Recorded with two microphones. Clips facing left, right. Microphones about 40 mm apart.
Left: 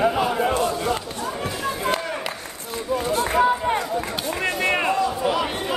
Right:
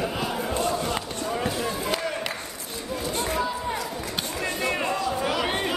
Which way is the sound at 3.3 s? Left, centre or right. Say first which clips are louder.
Left 11 dB; left.